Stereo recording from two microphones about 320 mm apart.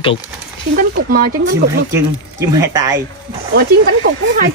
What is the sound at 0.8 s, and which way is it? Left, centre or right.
Speech, right.